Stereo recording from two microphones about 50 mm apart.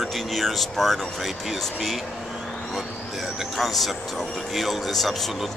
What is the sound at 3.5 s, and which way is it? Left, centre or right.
Speech, centre.